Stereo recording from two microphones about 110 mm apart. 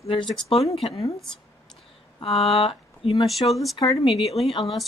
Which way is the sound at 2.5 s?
55° left (ahead or behind).